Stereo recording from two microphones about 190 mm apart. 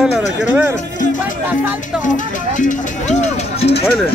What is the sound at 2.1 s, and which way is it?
Music, 40° left (ahead or behind).